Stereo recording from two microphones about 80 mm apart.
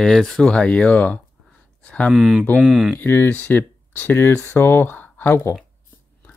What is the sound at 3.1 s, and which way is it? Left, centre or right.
Speech, left.